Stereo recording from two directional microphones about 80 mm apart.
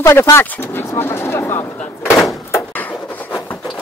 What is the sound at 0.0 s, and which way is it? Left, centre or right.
Speech, left.